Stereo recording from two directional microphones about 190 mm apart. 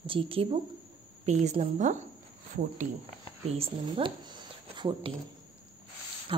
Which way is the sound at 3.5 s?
30° right (ahead or behind).